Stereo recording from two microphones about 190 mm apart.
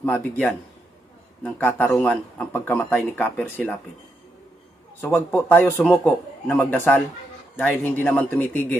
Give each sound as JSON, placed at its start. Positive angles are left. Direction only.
{"t": 0.0, "sound": "speech", "side_deg": 10}
{"t": 5.0, "sound": "speech", "side_deg": 10}